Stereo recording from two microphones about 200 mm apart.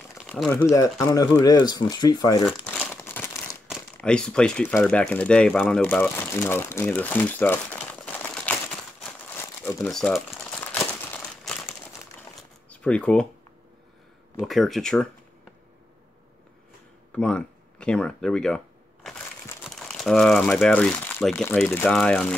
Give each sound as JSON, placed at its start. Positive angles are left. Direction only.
{"t": 0.3, "sound": "speech", "side_deg": 5}
{"t": 2.4, "sound": "crumpling", "side_deg": 5}
{"t": 3.6, "sound": "speech", "side_deg": 0}
{"t": 9.0, "sound": "crumpling", "side_deg": 10}
{"t": 12.6, "sound": "speech", "side_deg": 5}
{"t": 14.4, "sound": "speech", "side_deg": 0}
{"t": 17.1, "sound": "speech", "side_deg": 5}
{"t": 19.0, "sound": "crushing", "side_deg": 10}
{"t": 19.8, "sound": "speech", "side_deg": 0}